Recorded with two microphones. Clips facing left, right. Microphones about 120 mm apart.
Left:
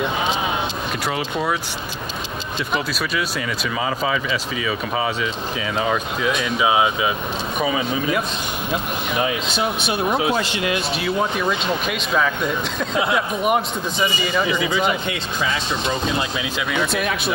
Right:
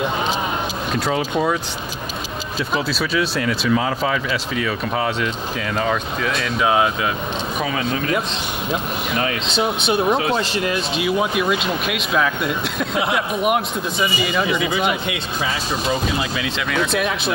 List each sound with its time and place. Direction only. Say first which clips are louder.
0.9 s speech: right 6 dB; centre (ahead or behind)
2.7 s speech: right 3 dB; centre (ahead or behind)
9.1 s speech: even; 5° left (ahead or behind)
10.3 s speech: right 1 dB; 40° right (ahead or behind)
11.3 s speech: right 1 dB; 5° right (ahead or behind)
16.2 s speech: even; 5° left (ahead or behind)